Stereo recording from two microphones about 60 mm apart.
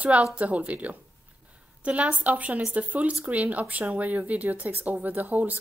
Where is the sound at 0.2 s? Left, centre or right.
Right.